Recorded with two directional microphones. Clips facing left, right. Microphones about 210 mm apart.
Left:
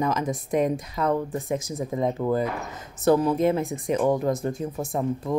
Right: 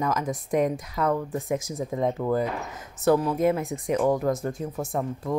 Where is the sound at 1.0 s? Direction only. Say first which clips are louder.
Even; 10° left (ahead or behind).